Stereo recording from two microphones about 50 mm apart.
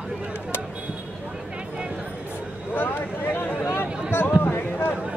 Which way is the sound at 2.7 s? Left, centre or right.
Left.